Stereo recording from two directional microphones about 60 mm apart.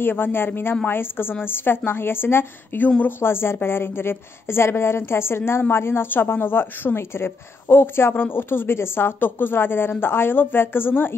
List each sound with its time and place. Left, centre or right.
0.0 s a woman's voice: left